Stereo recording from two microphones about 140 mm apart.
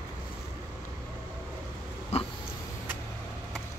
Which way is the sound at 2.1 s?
50° left (ahead or behind).